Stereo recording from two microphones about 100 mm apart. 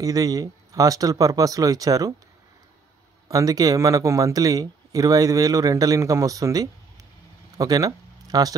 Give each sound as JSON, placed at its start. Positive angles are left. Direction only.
{"t": 0.0, "sound": "speech", "side_deg": -35}
{"t": 3.3, "sound": "speech", "side_deg": -35}